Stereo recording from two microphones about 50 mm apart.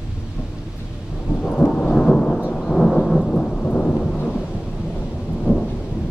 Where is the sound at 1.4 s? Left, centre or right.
Centre.